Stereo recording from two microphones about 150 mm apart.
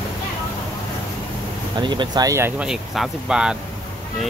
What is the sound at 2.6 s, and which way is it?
Speech, 5° right (ahead or behind).